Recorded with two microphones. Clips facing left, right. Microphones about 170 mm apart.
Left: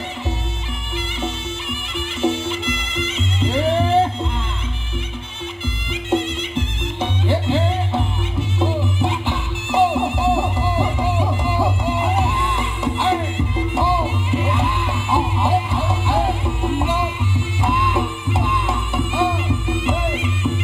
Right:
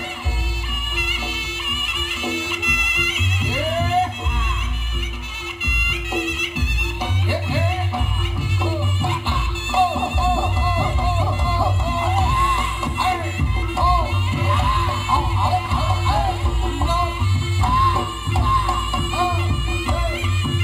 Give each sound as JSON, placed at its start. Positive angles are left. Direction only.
{"t": 0.9, "sound": "music", "side_deg": 30}
{"t": 5.7, "sound": "music", "side_deg": 30}